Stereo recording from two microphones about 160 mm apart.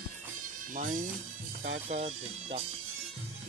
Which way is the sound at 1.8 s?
40° right (ahead or behind).